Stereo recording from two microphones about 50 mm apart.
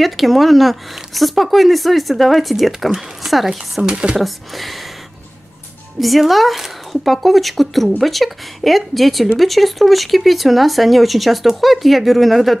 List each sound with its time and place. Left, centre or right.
0.0 s speech: centre
3.8 s speech: right
4.2 s speech: centre
5.9 s speech: centre